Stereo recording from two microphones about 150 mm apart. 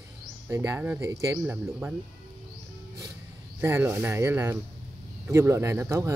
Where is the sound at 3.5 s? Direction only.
15° right (ahead or behind).